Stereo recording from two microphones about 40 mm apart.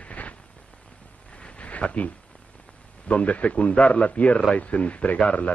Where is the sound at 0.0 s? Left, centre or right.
Left.